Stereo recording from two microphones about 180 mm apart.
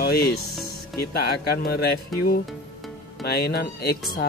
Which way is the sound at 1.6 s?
60° left (ahead or behind).